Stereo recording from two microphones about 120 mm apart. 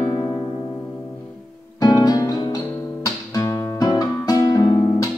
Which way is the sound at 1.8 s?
30° left (ahead or behind).